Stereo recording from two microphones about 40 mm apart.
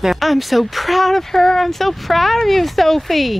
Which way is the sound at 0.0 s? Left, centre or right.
Centre.